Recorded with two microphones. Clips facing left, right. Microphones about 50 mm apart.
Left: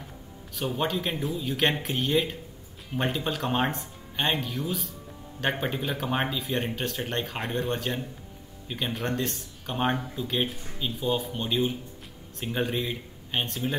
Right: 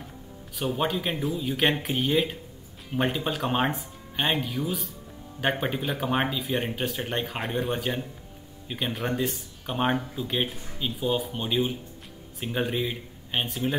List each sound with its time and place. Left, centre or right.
0.6 s speech: centre